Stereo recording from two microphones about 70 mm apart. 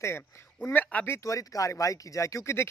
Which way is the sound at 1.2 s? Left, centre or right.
Left.